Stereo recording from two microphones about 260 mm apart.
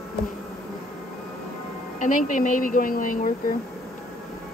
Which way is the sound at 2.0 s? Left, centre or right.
Left.